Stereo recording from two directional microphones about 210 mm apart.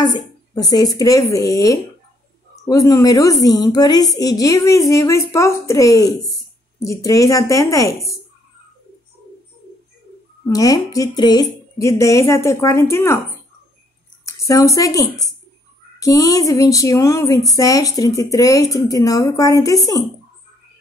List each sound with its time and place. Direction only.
0.6 s a woman's voice: 20° left (ahead or behind)
10.5 s a woman's voice: 15° left (ahead or behind)
14.2 s a woman's voice: 15° left (ahead or behind)